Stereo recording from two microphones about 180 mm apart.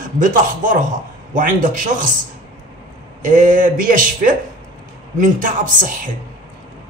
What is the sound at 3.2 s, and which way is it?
Speech, 45° right (ahead or behind).